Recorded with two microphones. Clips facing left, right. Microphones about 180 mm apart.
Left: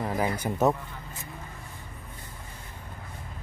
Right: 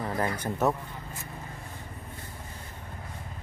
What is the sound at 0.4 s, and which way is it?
Speech, 15° left (ahead or behind).